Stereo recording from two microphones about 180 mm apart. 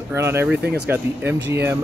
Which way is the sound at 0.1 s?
15° right (ahead or behind).